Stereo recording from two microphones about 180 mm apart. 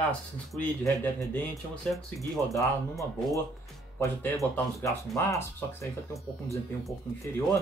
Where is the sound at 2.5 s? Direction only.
15° left (ahead or behind).